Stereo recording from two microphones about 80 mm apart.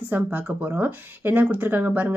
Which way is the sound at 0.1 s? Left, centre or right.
Right.